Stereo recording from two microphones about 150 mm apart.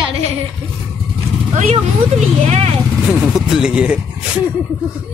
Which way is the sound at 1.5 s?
50° right (ahead or behind).